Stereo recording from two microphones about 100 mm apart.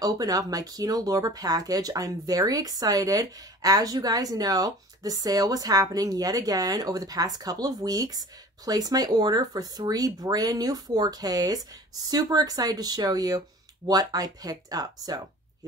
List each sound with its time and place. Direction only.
0.0 s speech: 40° right (ahead or behind)